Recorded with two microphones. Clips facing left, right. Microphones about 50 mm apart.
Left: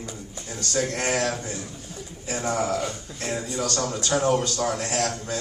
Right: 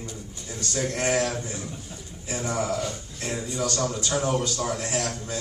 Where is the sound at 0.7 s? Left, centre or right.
Left.